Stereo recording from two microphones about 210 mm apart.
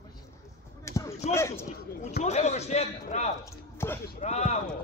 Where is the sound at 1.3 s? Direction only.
10° left (ahead or behind).